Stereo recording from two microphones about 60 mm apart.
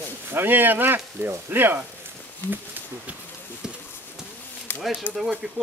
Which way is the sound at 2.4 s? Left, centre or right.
Left.